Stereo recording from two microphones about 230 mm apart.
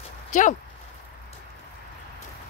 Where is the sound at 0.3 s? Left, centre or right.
Left.